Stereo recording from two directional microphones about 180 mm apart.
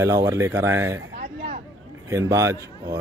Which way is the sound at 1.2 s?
50° right (ahead or behind).